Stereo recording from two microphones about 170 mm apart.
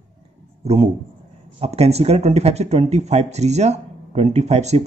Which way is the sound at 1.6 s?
35° right (ahead or behind).